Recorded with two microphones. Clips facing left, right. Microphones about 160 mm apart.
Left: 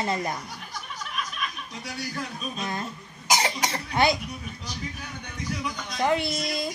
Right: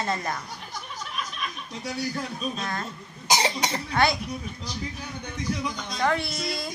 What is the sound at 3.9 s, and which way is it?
Speech, 15° left (ahead or behind).